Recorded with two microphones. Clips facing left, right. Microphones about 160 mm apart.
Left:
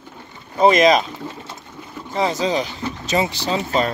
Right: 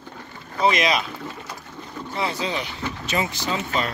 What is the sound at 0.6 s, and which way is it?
Speech, 45° left (ahead or behind).